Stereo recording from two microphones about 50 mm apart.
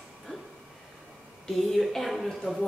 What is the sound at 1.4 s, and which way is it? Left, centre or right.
A woman's voice, centre.